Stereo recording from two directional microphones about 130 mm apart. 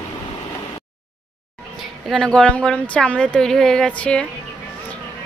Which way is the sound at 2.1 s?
5° left (ahead or behind).